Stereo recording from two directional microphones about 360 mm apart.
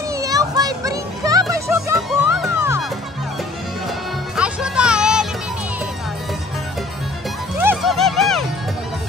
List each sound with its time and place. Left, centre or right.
0.1 s music: centre
4.4 s music: centre
7.5 s music: centre